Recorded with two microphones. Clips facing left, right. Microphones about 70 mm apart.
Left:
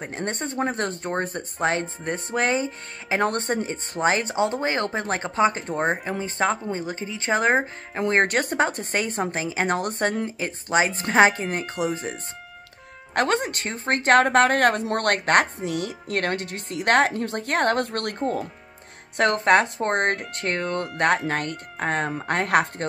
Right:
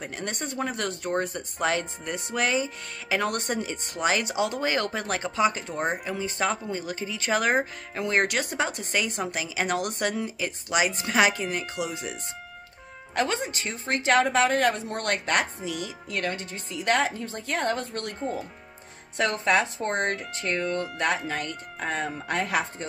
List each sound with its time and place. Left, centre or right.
0.0 s speech: left
8.0 s speech: left
13.1 s a woman's voice: left
19.1 s a woman's voice: left